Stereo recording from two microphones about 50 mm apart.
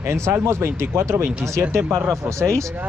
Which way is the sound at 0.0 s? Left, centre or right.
Right.